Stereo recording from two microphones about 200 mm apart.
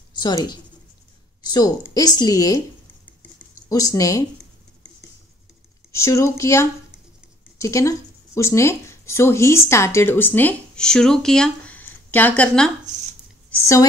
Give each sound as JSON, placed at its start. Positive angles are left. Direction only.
{"t": 0.2, "sound": "a woman's voice", "side_deg": 20}
{"t": 3.2, "sound": "a sound", "side_deg": 15}
{"t": 5.9, "sound": "speech", "side_deg": 15}